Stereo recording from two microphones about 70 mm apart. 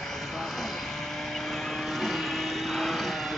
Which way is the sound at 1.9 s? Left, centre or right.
Centre.